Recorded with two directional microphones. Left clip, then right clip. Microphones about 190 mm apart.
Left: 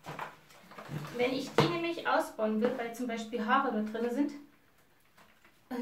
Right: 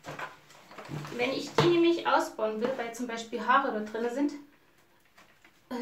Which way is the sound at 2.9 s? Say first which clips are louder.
Right 1 dB; 35° right (ahead or behind).